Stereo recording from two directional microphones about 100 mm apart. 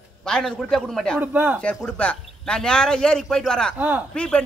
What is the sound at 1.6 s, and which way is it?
A man's voice, 15° left (ahead or behind).